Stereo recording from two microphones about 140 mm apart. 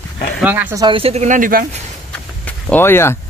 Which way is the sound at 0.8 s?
40° right (ahead or behind).